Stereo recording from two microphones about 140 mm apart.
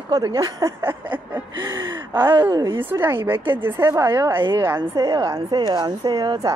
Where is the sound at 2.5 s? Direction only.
30° right (ahead or behind).